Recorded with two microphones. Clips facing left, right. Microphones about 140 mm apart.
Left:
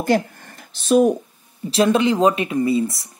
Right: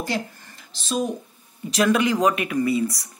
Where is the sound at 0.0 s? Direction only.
55° left (ahead or behind).